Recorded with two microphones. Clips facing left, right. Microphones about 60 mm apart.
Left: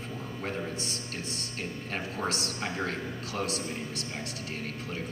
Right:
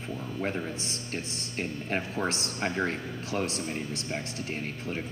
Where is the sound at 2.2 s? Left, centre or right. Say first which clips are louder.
Right 2 dB; right.